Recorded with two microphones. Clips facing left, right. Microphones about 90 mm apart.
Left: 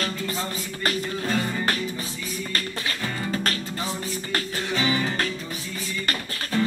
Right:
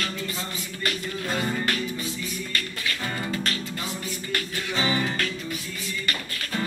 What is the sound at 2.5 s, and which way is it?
Music, 35° left (ahead or behind).